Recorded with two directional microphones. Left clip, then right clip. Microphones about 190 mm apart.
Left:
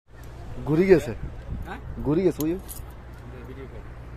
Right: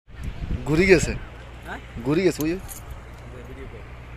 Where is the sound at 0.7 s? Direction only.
10° left (ahead or behind).